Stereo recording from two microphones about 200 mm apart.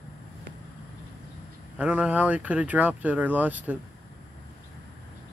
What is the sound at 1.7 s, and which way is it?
Speech, 5° right (ahead or behind).